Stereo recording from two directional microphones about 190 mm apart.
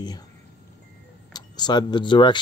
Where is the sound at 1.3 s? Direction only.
20° left (ahead or behind).